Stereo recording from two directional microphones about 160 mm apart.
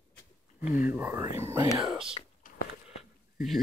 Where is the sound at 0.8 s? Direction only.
10° right (ahead or behind).